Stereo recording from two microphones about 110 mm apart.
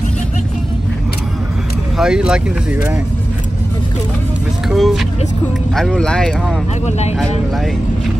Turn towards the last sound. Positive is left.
turn(degrees=85)